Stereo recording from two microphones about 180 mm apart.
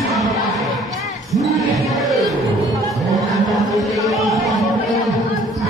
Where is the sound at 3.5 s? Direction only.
Centre (ahead or behind).